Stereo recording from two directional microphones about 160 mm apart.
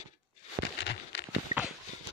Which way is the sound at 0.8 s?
90° left.